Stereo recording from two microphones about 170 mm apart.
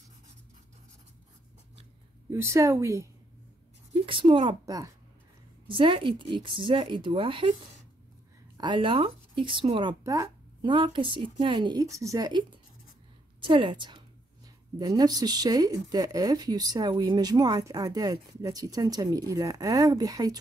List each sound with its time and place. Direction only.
2.2 s speech: 15° right (ahead or behind)
3.9 s a woman's voice: 30° right (ahead or behind)
8.5 s a woman's voice: 30° right (ahead or behind)